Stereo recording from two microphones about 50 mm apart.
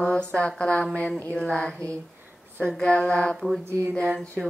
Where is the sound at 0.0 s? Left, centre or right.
Left.